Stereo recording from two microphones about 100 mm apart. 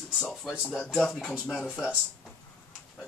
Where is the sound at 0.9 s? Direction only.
5° left (ahead or behind).